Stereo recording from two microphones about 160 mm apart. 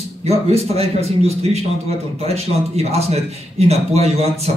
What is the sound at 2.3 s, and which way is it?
A man's voice, 40° right (ahead or behind).